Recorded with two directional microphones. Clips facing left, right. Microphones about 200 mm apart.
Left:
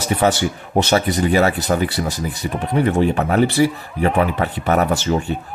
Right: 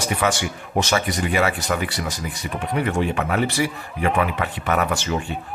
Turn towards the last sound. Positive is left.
turn(degrees=35)  # may be behind; listen again after turning